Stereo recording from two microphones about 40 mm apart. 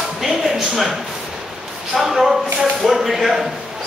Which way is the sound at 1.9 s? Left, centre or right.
Centre.